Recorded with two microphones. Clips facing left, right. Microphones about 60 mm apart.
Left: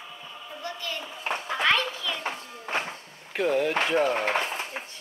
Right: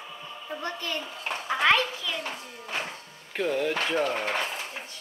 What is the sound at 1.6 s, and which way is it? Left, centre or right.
Children playing, centre.